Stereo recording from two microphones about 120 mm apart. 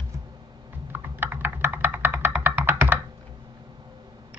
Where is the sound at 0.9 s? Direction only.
15° right (ahead or behind).